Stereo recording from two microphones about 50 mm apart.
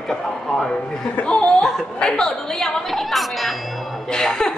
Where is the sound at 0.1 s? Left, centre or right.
Centre.